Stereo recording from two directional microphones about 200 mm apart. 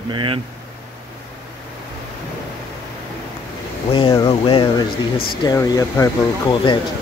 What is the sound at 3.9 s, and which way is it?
Speech, 25° left (ahead or behind).